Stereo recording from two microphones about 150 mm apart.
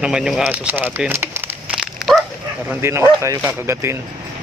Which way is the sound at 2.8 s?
15° right (ahead or behind).